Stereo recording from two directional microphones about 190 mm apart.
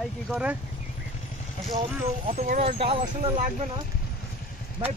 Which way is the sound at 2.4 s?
35° right (ahead or behind).